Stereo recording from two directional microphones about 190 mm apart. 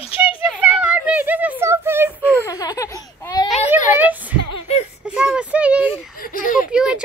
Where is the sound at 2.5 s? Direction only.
20° left (ahead or behind).